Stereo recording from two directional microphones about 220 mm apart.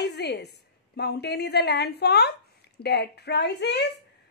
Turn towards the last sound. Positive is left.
turn(degrees=50)  # may be behind; listen again after turning